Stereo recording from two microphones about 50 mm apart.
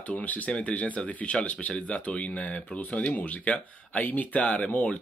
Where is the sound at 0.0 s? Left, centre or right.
Left.